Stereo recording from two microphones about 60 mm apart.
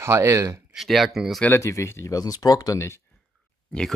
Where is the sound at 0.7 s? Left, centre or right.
Centre.